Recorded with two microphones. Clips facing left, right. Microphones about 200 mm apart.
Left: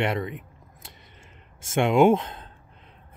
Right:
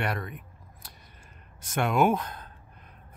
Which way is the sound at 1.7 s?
25° left (ahead or behind).